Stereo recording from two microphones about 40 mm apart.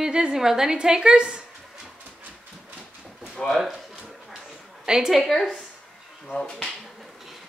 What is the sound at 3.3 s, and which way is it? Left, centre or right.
Speech, centre.